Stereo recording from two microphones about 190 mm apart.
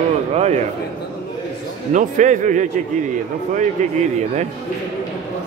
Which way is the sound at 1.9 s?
40° right (ahead or behind).